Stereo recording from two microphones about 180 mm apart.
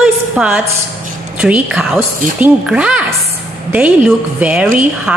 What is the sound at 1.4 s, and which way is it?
A woman's voice, 5° right (ahead or behind).